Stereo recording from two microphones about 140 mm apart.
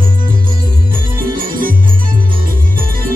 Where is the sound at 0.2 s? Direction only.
85° right.